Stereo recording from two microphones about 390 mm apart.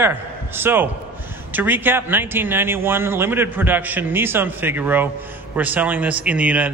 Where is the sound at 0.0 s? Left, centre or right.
Centre.